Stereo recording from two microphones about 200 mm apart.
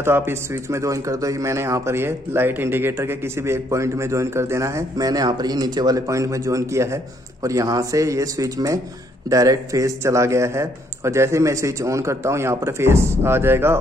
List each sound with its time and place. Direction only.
0.0 s speech: 10° right (ahead or behind)